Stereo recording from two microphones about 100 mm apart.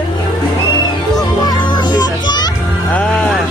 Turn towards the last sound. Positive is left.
turn(degrees=10)  # may be behind; listen again after turning